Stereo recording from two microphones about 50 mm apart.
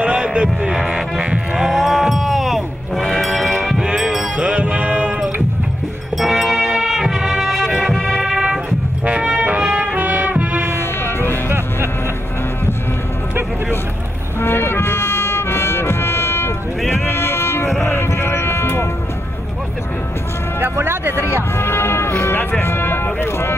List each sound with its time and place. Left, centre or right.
0.0 s heart sounds: centre
0.7 s a sound: centre
3.2 s music: centre
3.8 s music: centre
4.4 s music: right
6.1 s music: centre
9.5 s trumpet: right
9.9 s music: right
10.8 s music: left
14.4 s music: left
20.6 s vehicle: right
21.5 s music: left
22.3 s vehicle: left
22.6 s vehicle: left